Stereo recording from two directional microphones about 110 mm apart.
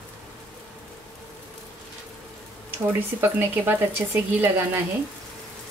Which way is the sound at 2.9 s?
20° right (ahead or behind).